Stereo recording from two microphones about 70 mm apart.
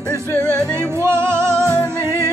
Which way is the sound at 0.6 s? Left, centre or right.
Right.